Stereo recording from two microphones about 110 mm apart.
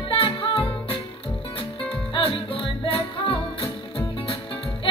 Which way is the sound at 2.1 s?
55° left (ahead or behind).